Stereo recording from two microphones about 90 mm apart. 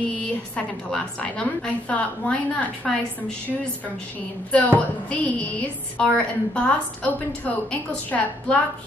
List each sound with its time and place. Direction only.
0.6 s a woman's voice: 10° left (ahead or behind)
4.5 s a woman's voice: 15° left (ahead or behind)